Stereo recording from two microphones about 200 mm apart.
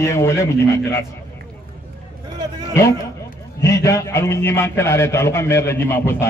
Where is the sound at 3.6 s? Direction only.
15° left (ahead or behind).